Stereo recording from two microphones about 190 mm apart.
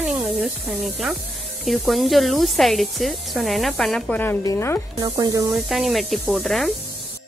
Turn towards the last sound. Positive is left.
turn(degrees=0)  # may be behind; listen again after turning